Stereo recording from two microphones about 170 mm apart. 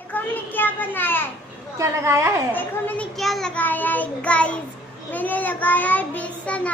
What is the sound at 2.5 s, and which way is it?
Child singing, 10° left (ahead or behind).